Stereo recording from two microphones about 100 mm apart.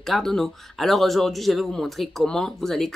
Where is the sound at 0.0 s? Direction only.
5° left (ahead or behind).